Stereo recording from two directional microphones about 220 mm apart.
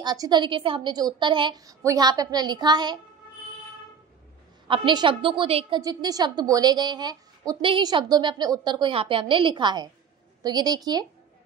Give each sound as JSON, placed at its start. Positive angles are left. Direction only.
{"t": 0.0, "sound": "a woman's voice", "side_deg": -20}
{"t": 4.6, "sound": "a woman's voice", "side_deg": -25}